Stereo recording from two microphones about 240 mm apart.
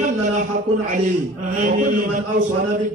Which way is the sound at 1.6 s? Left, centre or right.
Right.